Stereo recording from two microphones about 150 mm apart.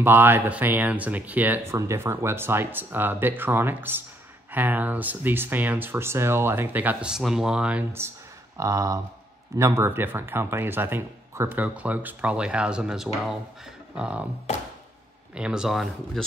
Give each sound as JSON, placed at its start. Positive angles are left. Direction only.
{"t": 0.0, "sound": "speech", "side_deg": -15}
{"t": 15.3, "sound": "speech", "side_deg": -5}